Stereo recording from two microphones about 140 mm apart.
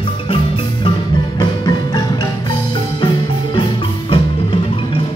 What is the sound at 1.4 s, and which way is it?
Music, 30° left (ahead or behind).